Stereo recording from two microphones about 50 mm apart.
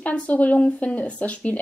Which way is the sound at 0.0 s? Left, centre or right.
Left.